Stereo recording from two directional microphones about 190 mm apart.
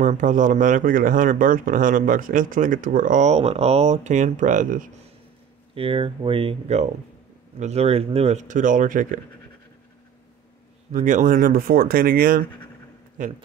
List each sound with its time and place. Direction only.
0.0 s speech: 40° right (ahead or behind)
5.8 s speech: 30° right (ahead or behind)
10.9 s speech: 40° right (ahead or behind)